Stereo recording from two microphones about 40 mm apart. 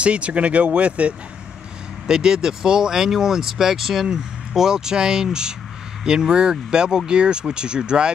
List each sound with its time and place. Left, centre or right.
0.0 s speech: right
2.0 s speech: centre